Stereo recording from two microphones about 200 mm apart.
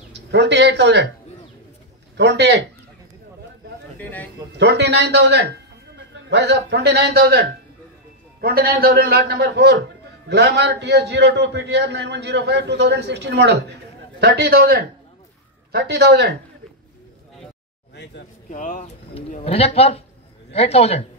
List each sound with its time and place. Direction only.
0.1 s speech: 60° right (ahead or behind)
2.1 s a man's voice: 60° right (ahead or behind)
4.0 s speech: 10° left (ahead or behind)
4.6 s a man's voice: 60° right (ahead or behind)
18.5 s a man's voice: 40° left (ahead or behind)